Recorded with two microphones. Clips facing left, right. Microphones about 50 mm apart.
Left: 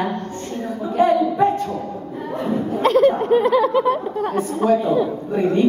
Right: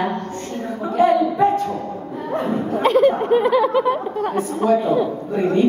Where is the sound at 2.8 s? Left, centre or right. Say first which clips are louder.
Even; centre.